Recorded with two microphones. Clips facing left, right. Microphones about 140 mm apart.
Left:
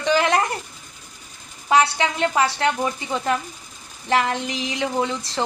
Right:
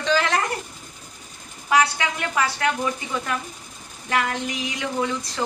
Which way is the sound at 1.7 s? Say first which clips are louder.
Left 2 dB; 25° left (ahead or behind).